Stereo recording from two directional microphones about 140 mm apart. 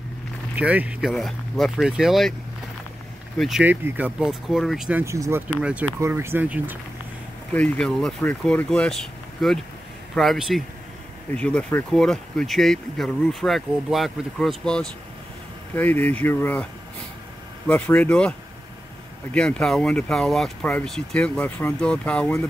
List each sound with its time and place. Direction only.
0.6 s speech: 10° right (ahead or behind)
3.3 s speech: centre (ahead or behind)
3.6 s speech: 10° right (ahead or behind)
5.0 s speech: 20° right (ahead or behind)
5.6 s speech: 10° right (ahead or behind)
5.9 s speech: 20° right (ahead or behind)
7.5 s speech: 5° left (ahead or behind)
17.6 s speech: 10° left (ahead or behind)
19.3 s speech: 5° left (ahead or behind)